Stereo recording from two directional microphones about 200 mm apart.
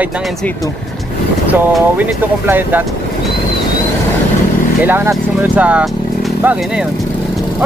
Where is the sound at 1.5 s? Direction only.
10° right (ahead or behind).